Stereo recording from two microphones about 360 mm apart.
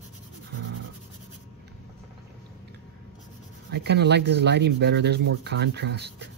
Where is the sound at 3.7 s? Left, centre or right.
Right.